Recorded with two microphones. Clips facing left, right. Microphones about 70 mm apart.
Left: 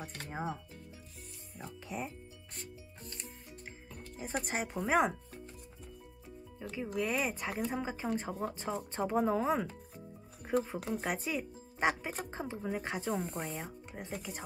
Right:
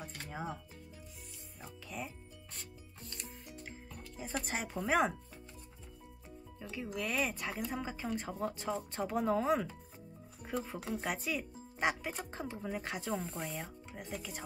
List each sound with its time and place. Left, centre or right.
1.9 s speech: centre
4.2 s speech: centre
6.6 s speech: centre
8.2 s speech: centre
8.6 s speech: left
9.0 s speech: centre
12.9 s speech: centre
14.0 s speech: centre